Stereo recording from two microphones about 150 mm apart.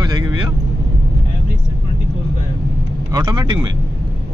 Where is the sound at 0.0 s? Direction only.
30° right (ahead or behind).